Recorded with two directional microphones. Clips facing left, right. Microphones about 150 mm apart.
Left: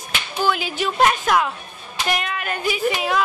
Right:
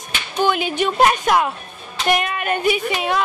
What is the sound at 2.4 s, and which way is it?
Speech, 60° right (ahead or behind).